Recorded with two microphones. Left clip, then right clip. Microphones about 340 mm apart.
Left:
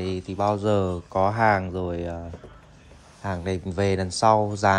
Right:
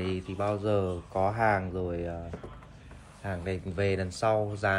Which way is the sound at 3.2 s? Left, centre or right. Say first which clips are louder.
Left 6 dB; centre.